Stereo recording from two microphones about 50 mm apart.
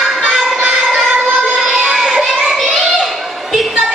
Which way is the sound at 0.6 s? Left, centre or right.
Right.